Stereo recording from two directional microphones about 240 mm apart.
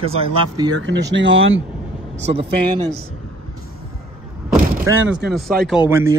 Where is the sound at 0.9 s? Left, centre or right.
Right.